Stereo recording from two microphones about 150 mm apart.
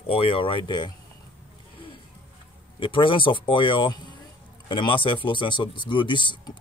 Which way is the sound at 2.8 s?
35° left (ahead or behind).